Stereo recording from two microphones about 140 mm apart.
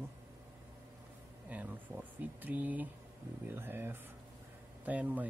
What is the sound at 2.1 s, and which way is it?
Speech, 10° right (ahead or behind).